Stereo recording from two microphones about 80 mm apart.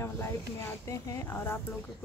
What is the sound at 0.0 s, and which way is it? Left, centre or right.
Speech, left.